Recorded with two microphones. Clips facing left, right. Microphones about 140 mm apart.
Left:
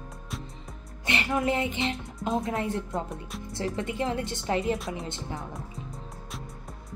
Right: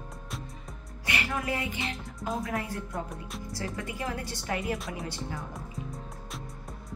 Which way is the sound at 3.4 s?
25° left (ahead or behind).